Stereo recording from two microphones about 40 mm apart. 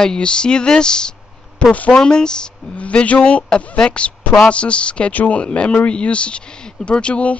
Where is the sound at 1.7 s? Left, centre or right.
Left.